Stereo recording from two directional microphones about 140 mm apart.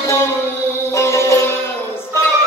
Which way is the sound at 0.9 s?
20° left (ahead or behind).